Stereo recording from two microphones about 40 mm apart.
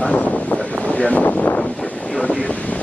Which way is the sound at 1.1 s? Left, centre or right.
Left.